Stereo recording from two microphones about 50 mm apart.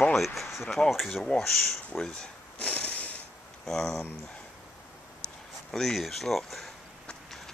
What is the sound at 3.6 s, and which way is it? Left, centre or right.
Speech, centre.